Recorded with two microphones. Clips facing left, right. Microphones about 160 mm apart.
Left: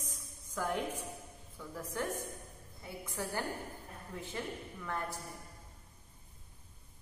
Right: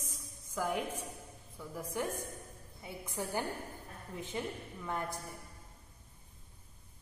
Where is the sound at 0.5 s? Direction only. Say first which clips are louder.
Right 1 dB; 10° right (ahead or behind).